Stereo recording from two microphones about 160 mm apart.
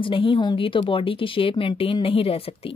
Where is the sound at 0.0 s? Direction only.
30° left (ahead or behind).